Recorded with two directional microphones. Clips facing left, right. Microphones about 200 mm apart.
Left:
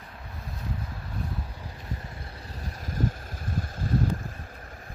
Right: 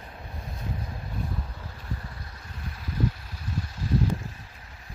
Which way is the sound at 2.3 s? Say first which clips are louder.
Left 2 dB; 40° left (ahead or behind).